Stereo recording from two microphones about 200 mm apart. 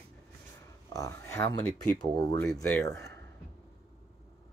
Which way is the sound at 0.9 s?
15° left (ahead or behind).